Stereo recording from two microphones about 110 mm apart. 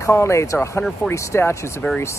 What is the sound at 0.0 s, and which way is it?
Speech, 25° left (ahead or behind).